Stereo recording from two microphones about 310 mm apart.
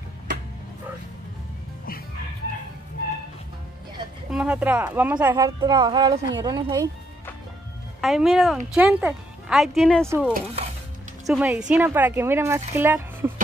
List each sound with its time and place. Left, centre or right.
4.3 s speech: centre
8.0 s speech: centre
10.3 s speech: centre
11.2 s speech: centre